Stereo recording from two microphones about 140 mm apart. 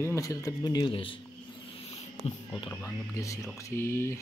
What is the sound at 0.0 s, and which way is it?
Speech, 20° left (ahead or behind).